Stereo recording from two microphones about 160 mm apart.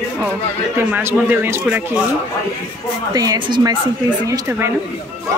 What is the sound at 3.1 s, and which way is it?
A woman's voice, 25° right (ahead or behind).